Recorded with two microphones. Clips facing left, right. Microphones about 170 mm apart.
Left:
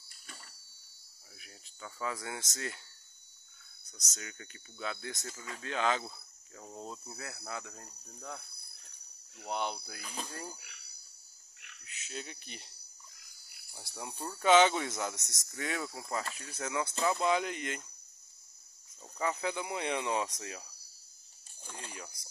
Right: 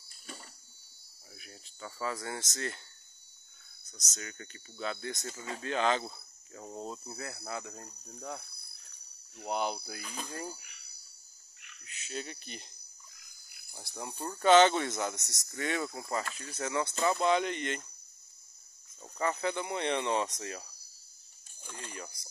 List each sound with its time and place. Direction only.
0.3 s a sound: 20° right (ahead or behind)
1.4 s speech: centre (ahead or behind)
3.9 s speech: 10° left (ahead or behind)
5.2 s speech: 25° right (ahead or behind)
5.6 s cricket: centre (ahead or behind)
9.5 s cricket: 5° right (ahead or behind)
11.8 s speech: 5° left (ahead or behind)
13.8 s cricket: 5° left (ahead or behind)
19.1 s speech: 5° left (ahead or behind)
21.6 s cricket: 5° left (ahead or behind)